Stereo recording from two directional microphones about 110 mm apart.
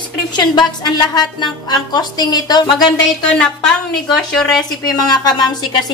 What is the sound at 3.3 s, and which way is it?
Speech, 5° left (ahead or behind).